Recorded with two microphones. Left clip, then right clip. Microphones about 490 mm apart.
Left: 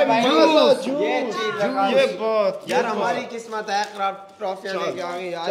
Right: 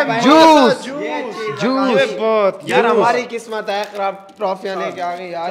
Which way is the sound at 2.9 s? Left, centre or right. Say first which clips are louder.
Right 9 dB; right.